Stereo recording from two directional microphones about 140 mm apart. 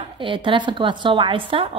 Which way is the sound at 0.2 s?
35° right (ahead or behind).